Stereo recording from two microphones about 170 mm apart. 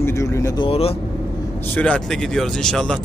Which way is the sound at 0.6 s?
35° left (ahead or behind).